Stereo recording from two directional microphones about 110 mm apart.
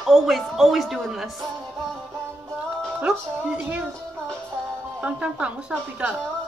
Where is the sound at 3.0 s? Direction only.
5° right (ahead or behind).